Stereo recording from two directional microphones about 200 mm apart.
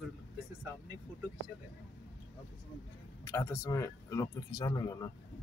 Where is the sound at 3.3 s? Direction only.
15° left (ahead or behind).